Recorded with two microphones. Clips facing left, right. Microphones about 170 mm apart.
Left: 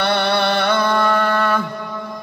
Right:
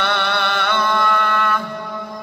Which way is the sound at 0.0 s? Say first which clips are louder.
Left 4 dB; 40° left (ahead or behind).